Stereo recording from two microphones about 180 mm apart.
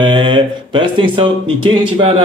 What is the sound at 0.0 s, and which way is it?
Speech, 25° right (ahead or behind).